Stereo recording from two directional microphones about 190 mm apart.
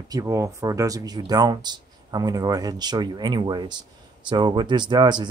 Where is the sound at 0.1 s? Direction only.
15° right (ahead or behind).